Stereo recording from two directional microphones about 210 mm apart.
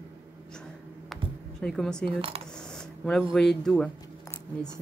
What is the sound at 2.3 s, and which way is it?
Speech, 25° right (ahead or behind).